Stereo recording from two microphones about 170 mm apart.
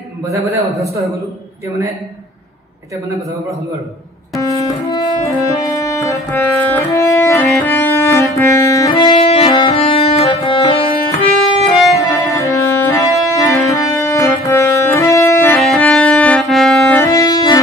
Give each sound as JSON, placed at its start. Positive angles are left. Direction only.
{"t": 0.5, "sound": "a man's voice", "side_deg": -20}
{"t": 4.4, "sound": "music", "side_deg": 20}
{"t": 12.0, "sound": "music", "side_deg": 20}
{"t": 17.0, "sound": "music", "side_deg": 20}